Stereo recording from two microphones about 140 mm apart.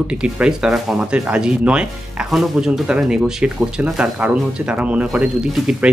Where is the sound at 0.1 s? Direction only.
5° right (ahead or behind).